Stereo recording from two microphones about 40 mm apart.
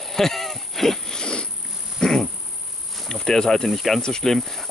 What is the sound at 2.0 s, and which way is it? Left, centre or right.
Dog, centre.